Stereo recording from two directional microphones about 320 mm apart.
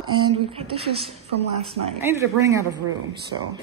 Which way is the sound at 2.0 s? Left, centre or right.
Centre.